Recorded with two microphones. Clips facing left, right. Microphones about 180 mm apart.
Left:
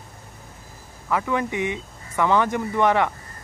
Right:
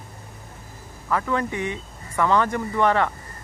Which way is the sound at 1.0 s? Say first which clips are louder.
Even; 15° left (ahead or behind).